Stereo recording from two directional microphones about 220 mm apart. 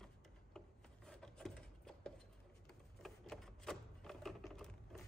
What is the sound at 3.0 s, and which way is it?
Typewriter, centre (ahead or behind).